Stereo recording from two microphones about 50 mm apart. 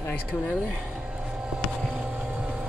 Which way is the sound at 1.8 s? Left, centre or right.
Centre.